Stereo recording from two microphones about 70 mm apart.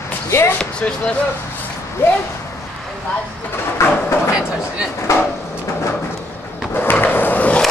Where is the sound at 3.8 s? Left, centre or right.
Left.